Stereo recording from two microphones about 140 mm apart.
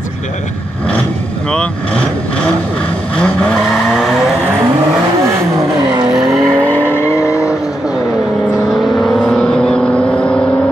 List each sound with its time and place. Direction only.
3.2 s vehicle: 5° left (ahead or behind)
6.1 s vehicle: centre (ahead or behind); by 7.5 s 20° left (ahead or behind)
9.0 s vehicle: 5° left (ahead or behind)